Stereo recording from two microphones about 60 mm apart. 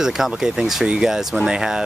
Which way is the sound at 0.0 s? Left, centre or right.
Centre.